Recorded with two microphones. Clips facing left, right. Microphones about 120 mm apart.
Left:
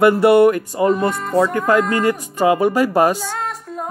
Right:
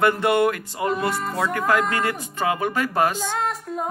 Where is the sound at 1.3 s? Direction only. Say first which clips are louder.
Left 8 dB; 30° left (ahead or behind).